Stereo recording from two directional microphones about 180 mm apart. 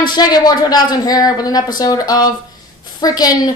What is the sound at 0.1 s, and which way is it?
A woman's voice, 20° left (ahead or behind).